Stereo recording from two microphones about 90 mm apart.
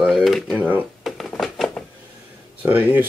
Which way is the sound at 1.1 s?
Centre (ahead or behind).